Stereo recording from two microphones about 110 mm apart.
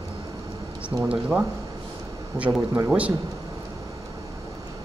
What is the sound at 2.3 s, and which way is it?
Speech, 30° right (ahead or behind).